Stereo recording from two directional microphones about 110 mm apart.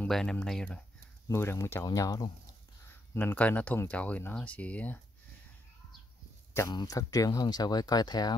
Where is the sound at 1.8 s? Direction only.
35° left (ahead or behind).